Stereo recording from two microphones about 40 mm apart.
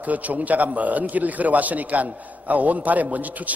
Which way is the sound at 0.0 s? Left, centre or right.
Right.